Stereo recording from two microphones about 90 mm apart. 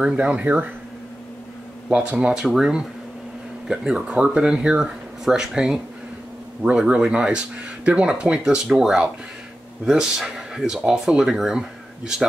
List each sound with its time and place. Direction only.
0.0 s speech: 15° right (ahead or behind)
1.9 s speech: 10° right (ahead or behind)